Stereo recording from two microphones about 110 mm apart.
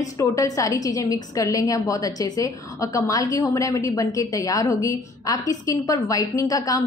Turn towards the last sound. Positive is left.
turn(degrees=35)  # may be behind; listen again after turning